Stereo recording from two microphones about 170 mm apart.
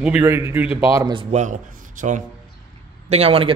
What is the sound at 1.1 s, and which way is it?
Speech, 30° right (ahead or behind).